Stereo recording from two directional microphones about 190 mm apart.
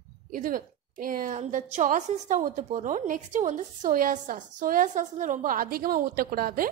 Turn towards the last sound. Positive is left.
turn(degrees=-50)  # may be behind; listen again after turning